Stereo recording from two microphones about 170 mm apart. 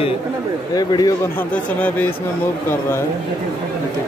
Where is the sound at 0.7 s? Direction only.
20° left (ahead or behind).